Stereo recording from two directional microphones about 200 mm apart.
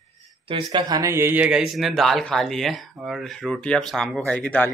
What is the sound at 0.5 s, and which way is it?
Speech, 25° right (ahead or behind).